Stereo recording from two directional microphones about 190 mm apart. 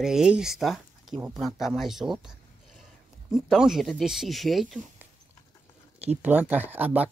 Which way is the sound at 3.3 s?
Centre (ahead or behind).